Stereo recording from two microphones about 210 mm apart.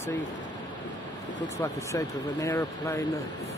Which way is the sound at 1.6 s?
15° left (ahead or behind).